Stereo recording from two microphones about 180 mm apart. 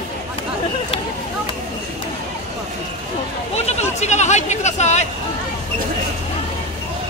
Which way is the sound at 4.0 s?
40° left (ahead or behind).